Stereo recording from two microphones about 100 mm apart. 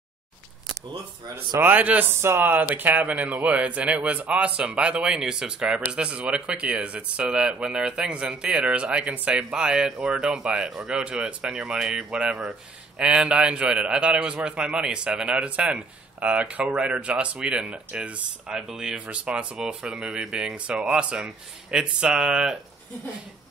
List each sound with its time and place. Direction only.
1.6 s speech: 15° right (ahead or behind)